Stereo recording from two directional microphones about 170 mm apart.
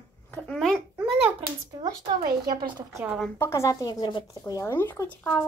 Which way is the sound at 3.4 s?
15° left (ahead or behind).